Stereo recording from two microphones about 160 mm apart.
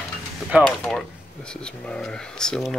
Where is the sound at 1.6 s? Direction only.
5° left (ahead or behind).